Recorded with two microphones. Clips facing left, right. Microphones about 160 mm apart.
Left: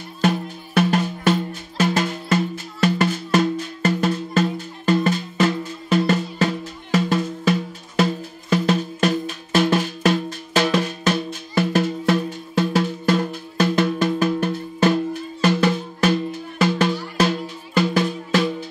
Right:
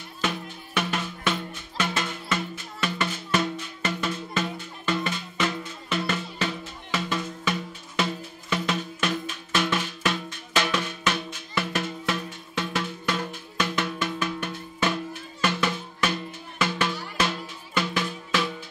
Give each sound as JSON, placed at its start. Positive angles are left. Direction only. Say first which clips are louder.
{"t": 0.2, "sound": "music", "louder": "left 9 dB", "side_deg": 40}